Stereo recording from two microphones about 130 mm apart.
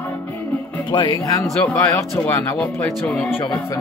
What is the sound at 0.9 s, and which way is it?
Speech, 35° left (ahead or behind).